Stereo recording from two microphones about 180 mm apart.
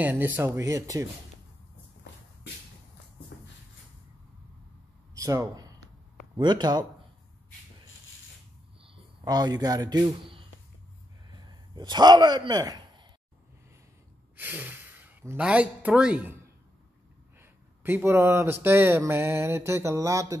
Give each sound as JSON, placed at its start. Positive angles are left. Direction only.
{"t": 0.0, "sound": "speech", "side_deg": -10}
{"t": 2.1, "sound": "shuffle", "side_deg": 75}
{"t": 5.1, "sound": "speech", "side_deg": -20}
{"t": 8.8, "sound": "speech", "side_deg": -20}
{"t": 11.7, "sound": "a man's voice", "side_deg": -25}
{"t": 14.3, "sound": "speech", "side_deg": -10}
{"t": 17.4, "sound": "speech", "side_deg": -10}